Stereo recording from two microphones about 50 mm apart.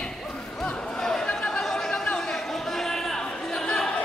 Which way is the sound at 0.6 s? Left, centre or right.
Centre.